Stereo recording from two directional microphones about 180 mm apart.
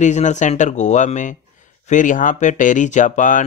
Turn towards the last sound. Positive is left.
turn(degrees=45)  # may be behind; listen again after turning